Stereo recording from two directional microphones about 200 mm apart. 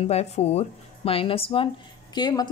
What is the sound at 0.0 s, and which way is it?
Speech, 30° left (ahead or behind).